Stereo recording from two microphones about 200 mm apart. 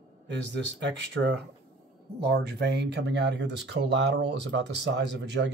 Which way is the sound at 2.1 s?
55° right (ahead or behind).